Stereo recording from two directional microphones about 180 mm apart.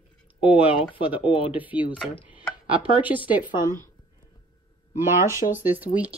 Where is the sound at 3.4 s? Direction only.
25° left (ahead or behind).